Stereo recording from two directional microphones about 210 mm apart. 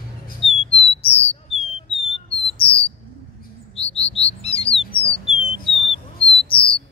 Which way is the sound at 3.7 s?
30° left (ahead or behind).